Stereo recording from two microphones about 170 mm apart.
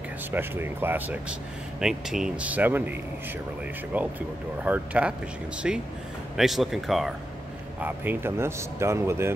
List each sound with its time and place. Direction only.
0.3 s speech: 10° right (ahead or behind)